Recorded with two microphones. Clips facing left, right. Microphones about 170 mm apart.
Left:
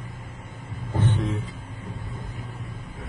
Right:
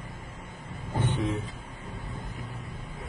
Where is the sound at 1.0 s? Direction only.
10° right (ahead or behind).